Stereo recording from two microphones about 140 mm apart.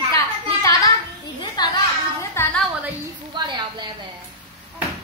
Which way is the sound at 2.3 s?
15° left (ahead or behind).